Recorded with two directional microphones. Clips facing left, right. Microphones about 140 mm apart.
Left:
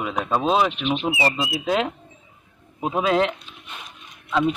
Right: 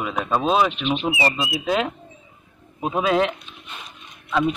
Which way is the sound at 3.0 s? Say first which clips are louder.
Even; 10° right (ahead or behind).